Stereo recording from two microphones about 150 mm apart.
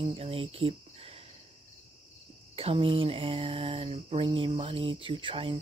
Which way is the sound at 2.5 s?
40° right (ahead or behind).